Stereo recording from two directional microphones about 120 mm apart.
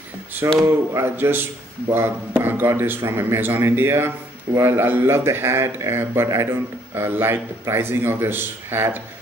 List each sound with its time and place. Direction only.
0.6 s a man's voice: 20° right (ahead or behind)